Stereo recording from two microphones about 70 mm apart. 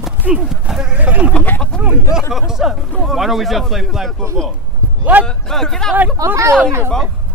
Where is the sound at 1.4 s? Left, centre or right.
Centre.